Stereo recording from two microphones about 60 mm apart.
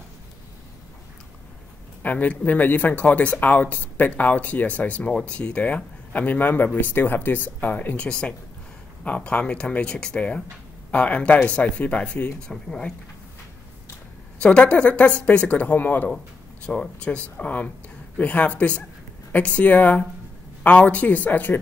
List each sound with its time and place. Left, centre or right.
2.0 s speech: left
12.4 s speech: centre
14.4 s speech: centre
16.6 s speech: centre